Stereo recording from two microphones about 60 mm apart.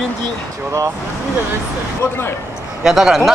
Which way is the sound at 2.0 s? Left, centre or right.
Left.